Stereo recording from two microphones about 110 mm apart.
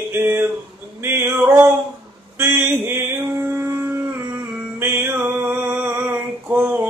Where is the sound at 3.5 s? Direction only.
25° right (ahead or behind).